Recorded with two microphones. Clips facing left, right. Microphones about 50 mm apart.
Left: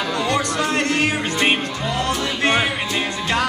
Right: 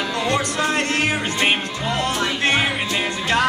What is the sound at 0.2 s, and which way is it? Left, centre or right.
Music, centre.